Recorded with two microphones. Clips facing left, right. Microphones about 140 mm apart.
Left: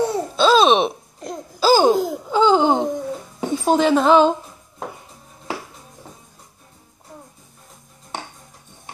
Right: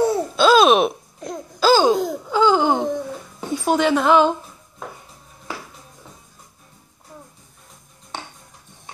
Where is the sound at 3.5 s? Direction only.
25° left (ahead or behind).